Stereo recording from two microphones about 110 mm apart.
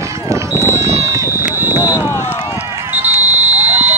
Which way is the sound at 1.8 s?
25° left (ahead or behind).